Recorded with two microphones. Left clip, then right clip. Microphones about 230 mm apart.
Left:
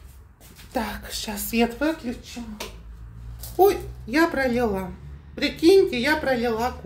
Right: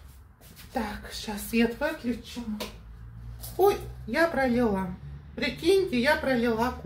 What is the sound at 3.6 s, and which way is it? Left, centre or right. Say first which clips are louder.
A child's voice: left 5 dB; left.